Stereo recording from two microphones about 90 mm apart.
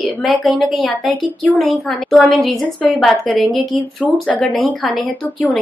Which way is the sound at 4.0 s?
15° left (ahead or behind).